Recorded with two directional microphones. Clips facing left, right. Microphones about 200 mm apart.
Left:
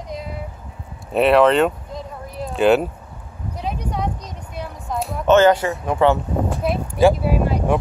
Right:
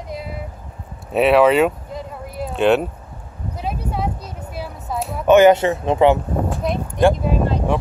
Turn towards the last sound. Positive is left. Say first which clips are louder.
# even
turn(degrees=10)  # may be behind; listen again after turning